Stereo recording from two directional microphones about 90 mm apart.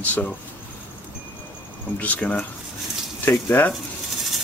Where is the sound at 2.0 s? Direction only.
15° left (ahead or behind).